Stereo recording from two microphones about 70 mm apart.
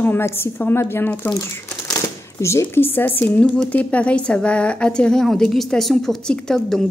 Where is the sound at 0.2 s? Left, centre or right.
Left.